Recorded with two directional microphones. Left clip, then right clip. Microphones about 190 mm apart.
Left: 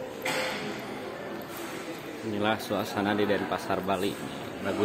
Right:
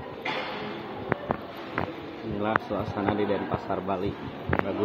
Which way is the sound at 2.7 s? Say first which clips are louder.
Left 1 dB; 25° left (ahead or behind).